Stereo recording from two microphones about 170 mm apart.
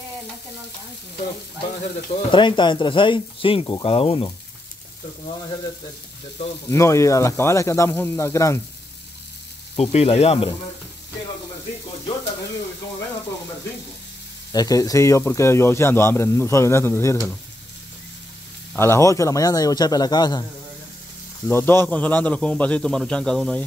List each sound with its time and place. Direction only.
2.0 s speech: 30° left (ahead or behind)
6.7 s a man's voice: 15° left (ahead or behind)
9.8 s speech: 35° left (ahead or behind)
14.5 s a man's voice: 20° left (ahead or behind)
18.8 s speech: 15° left (ahead or behind)
21.5 s a man's voice: 15° left (ahead or behind)